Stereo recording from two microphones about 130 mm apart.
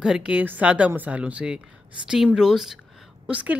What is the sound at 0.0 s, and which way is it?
A woman's voice, 5° right (ahead or behind).